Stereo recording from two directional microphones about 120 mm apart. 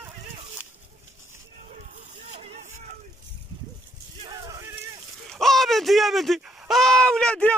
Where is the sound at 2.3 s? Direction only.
65° right (ahead or behind).